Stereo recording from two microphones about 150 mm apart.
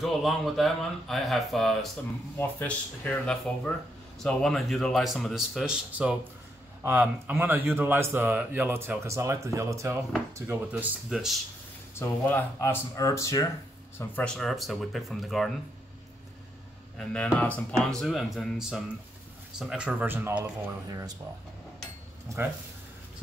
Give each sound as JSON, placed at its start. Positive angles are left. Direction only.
{"t": 0.0, "sound": "a man's voice", "side_deg": 0}
{"t": 11.9, "sound": "speech", "side_deg": 15}
{"t": 13.9, "sound": "a man's voice", "side_deg": 10}
{"t": 16.9, "sound": "a man's voice", "side_deg": 5}